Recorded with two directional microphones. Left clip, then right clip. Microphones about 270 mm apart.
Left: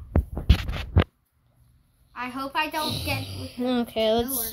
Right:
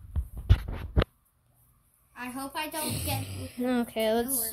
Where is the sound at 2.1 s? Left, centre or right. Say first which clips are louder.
Left 8 dB; right.